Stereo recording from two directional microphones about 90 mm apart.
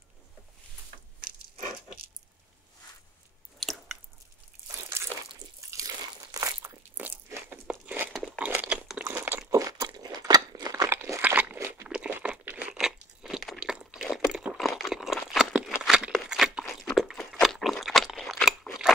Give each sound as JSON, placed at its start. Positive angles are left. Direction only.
{"t": 3.5, "sound": "chewing", "side_deg": 0}
{"t": 4.9, "sound": "a sound", "side_deg": -30}
{"t": 5.6, "sound": "crunch", "side_deg": -40}
{"t": 7.2, "sound": "crunch", "side_deg": -30}
{"t": 7.6, "sound": "crumpling", "side_deg": -10}
{"t": 9.0, "sound": "crunch", "side_deg": -20}
{"t": 9.5, "sound": "crunch", "side_deg": -40}
{"t": 11.1, "sound": "crunch", "side_deg": -20}
{"t": 11.5, "sound": "crunch", "side_deg": -30}
{"t": 11.9, "sound": "crumpling", "side_deg": -15}
{"t": 12.7, "sound": "crunch", "side_deg": -5}
{"t": 14.3, "sound": "a sound", "side_deg": -10}